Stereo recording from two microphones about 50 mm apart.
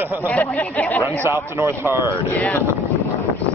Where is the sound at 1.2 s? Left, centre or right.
Right.